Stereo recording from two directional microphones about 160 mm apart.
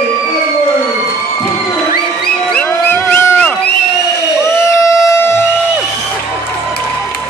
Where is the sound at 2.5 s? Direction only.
10° left (ahead or behind).